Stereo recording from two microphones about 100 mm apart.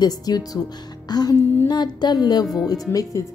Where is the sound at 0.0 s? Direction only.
40° left (ahead or behind).